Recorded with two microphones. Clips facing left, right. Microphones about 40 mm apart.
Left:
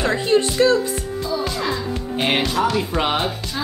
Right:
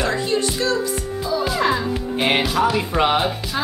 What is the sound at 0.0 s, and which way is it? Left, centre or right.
Speech, left.